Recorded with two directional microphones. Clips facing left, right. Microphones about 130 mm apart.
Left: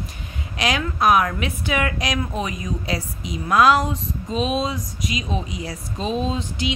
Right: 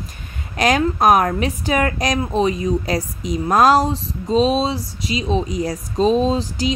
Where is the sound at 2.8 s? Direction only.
40° right (ahead or behind).